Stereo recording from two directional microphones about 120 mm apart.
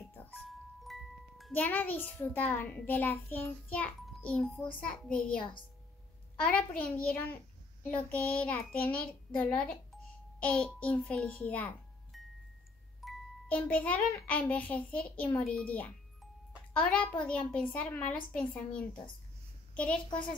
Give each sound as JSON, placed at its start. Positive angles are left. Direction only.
{"t": 0.1, "sound": "music", "side_deg": 15}
{"t": 0.4, "sound": "music", "side_deg": 0}
{"t": 1.5, "sound": "a child's voice", "side_deg": 15}
{"t": 6.5, "sound": "a child's voice", "side_deg": 10}
{"t": 12.1, "sound": "music", "side_deg": 0}
{"t": 13.5, "sound": "a child's voice", "side_deg": 15}